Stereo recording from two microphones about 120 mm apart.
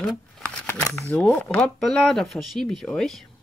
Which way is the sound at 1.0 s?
15° left (ahead or behind).